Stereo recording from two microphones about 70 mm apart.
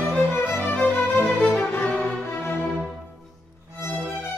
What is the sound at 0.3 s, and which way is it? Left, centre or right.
Music, left.